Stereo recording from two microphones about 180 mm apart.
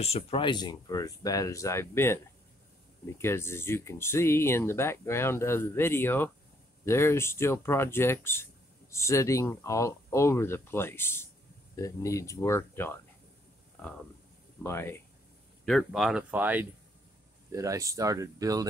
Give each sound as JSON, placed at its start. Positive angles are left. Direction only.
{"t": 0.0, "sound": "speech", "side_deg": 35}
{"t": 14.6, "sound": "speech", "side_deg": 15}
{"t": 15.6, "sound": "speech", "side_deg": 0}